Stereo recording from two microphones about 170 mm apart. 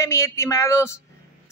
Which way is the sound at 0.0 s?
15° left (ahead or behind).